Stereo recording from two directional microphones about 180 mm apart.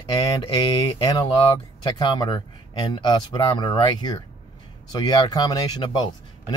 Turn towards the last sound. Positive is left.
turn(degrees=25)  # may be behind; listen again after turning